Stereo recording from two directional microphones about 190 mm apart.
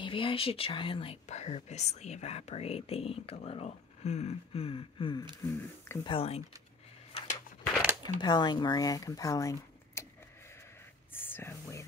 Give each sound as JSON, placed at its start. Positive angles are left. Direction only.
{"t": 0.0, "sound": "speech", "side_deg": 25}
{"t": 5.4, "sound": "speech", "side_deg": 15}
{"t": 6.0, "sound": "speech", "side_deg": 30}
{"t": 7.1, "sound": "a sound", "side_deg": 30}
{"t": 8.2, "sound": "speech", "side_deg": 25}
{"t": 11.1, "sound": "whispering", "side_deg": 10}